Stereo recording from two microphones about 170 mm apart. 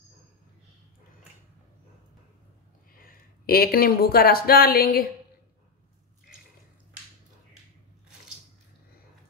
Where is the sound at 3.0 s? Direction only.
60° left (ahead or behind).